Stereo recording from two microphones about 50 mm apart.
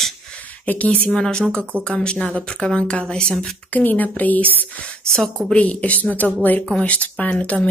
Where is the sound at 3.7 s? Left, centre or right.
Left.